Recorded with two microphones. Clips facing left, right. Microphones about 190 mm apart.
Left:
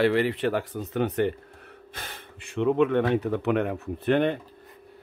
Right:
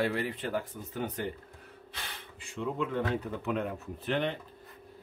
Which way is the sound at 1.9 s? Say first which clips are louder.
Left 4 dB; 55° left (ahead or behind).